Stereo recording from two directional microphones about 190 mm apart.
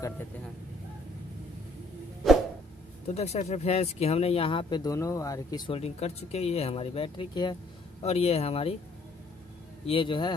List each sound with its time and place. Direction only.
3.1 s speech: 35° left (ahead or behind); by 5.6 s 15° left (ahead or behind)
5.7 s speech: 35° left (ahead or behind)
9.8 s speech: 25° left (ahead or behind)